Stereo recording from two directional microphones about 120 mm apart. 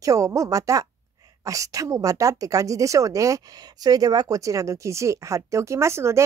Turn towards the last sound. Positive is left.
turn(degrees=-20)  # may be behind; listen again after turning